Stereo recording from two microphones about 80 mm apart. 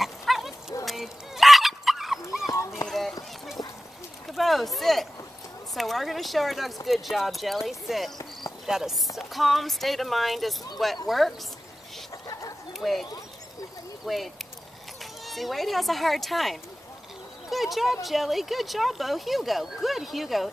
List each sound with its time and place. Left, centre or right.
0.0 s goat: centre
0.8 s dog: centre
2.9 s run: centre
4.3 s a sound: centre
5.8 s speech: centre
12.3 s chicken: left
12.7 s speech: centre
14.0 s speech: centre